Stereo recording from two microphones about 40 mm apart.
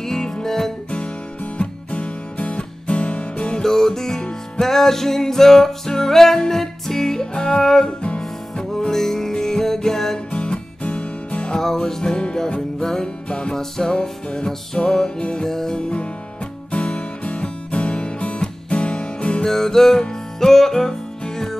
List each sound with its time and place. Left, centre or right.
0.0 s music: centre
0.9 s music: left
3.6 s music: centre
10.3 s music: left
11.6 s music: centre
13.6 s music: centre
16.7 s music: left
19.4 s music: centre